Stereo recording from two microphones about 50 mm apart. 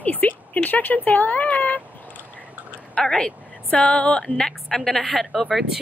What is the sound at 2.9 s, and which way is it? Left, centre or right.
A woman's voice, centre.